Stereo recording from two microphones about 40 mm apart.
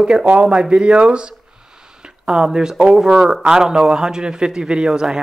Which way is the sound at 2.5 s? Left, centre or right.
Centre.